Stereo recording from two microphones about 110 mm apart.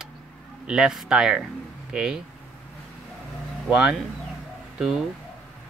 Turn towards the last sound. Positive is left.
turn(degrees=-5)  # may be behind; listen again after turning